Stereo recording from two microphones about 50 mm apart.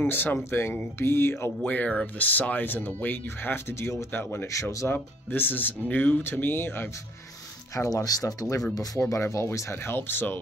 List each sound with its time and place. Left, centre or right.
0.0 s speech: left
0.5 s speech: left
1.6 s speech: left
3.6 s speech: left
4.1 s speech: left
4.5 s speech: left
4.8 s speech: left
6.2 s speech: left
7.7 s speech: left
9.1 s speech: left
9.9 s speech: left